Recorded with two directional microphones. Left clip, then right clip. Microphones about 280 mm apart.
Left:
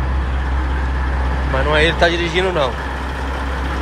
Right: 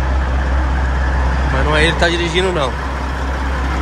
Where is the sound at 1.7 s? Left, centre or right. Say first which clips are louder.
Even; centre.